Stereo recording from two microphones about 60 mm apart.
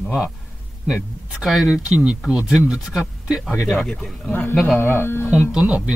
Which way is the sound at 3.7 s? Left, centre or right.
Centre.